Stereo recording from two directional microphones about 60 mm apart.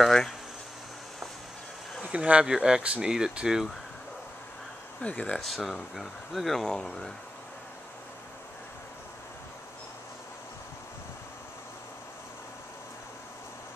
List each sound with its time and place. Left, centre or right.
0.0 s speech: centre
2.0 s speech: centre
5.0 s speech: left
5.4 s speech: centre